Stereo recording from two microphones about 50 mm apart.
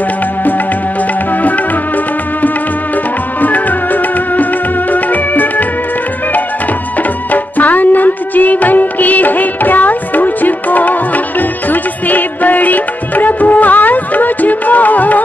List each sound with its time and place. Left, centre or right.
3.3 s music: left
7.0 s music: left